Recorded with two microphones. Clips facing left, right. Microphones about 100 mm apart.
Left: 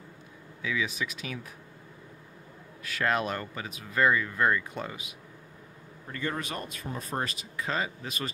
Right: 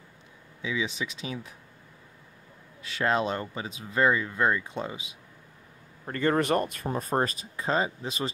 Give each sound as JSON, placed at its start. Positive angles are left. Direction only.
{"t": 0.6, "sound": "speech", "side_deg": -25}
{"t": 2.8, "sound": "speech", "side_deg": -25}
{"t": 6.0, "sound": "speech", "side_deg": -55}